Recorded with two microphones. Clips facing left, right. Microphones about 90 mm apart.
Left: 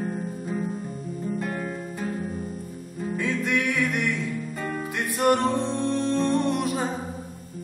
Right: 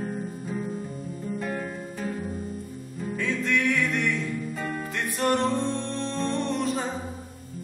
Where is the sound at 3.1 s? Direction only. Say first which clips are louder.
Left 1 dB; 10° left (ahead or behind).